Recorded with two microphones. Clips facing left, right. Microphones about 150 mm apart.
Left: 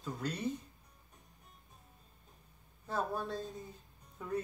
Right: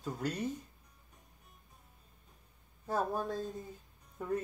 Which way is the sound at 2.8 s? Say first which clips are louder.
Right 3 dB; 45° right (ahead or behind).